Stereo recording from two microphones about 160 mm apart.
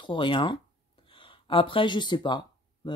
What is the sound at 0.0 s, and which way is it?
Speech, 30° left (ahead or behind).